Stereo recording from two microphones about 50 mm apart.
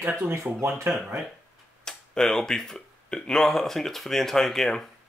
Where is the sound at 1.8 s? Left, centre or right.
Centre.